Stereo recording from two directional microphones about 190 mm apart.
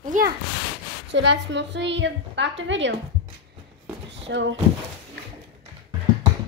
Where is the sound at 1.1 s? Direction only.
65° right (ahead or behind).